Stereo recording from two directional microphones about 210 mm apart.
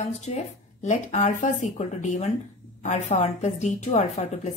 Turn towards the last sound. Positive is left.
turn(degrees=35)  # may be behind; listen again after turning